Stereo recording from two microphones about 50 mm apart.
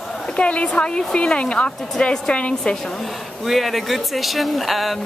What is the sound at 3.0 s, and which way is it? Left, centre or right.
Speech, centre.